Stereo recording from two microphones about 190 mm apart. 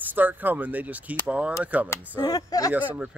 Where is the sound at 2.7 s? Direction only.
10° right (ahead or behind).